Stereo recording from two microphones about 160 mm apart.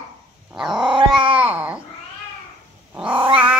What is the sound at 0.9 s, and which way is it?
Cat, 35° right (ahead or behind).